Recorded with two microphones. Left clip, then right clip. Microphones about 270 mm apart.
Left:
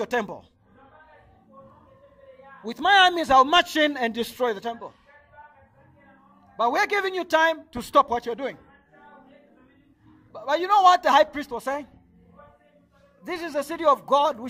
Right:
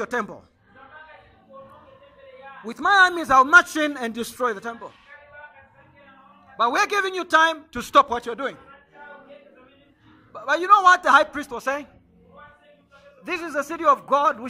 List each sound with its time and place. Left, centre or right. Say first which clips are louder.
0.0 s a man's voice: even; left
2.6 s a man's voice: right 1 dB; left
6.5 s a man's voice: right 2 dB; left
10.3 s a man's voice: right 4 dB; left
13.2 s a man's voice: right 2 dB; left